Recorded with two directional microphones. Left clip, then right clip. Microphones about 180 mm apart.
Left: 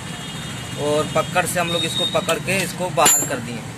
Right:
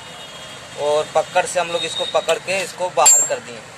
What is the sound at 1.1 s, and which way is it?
Speech, 35° right (ahead or behind).